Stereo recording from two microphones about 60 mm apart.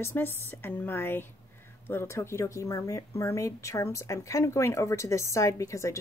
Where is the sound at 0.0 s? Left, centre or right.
Left.